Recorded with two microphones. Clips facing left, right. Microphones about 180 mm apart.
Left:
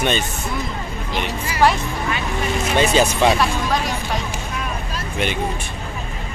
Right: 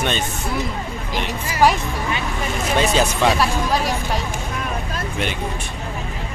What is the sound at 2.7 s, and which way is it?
Speech, centre (ahead or behind).